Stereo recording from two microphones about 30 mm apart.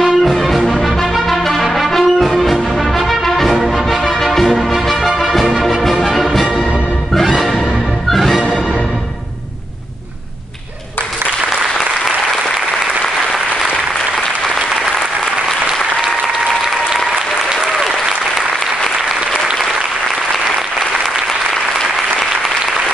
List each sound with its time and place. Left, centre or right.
0.2 s music: centre
8.1 s music: centre
17.6 s applause: centre